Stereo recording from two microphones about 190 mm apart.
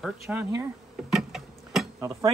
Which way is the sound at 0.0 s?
10° right (ahead or behind).